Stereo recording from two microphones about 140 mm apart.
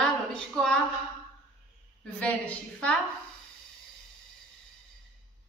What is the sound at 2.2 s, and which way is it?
Speech, 10° left (ahead or behind).